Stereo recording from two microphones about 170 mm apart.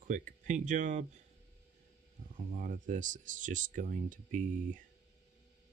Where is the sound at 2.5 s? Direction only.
50° right (ahead or behind).